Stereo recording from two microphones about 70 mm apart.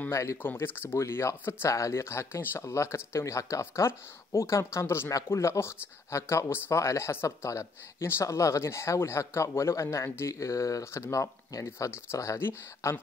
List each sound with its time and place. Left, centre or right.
0.1 s speech: left
0.4 s speech: left
12.4 s speech: left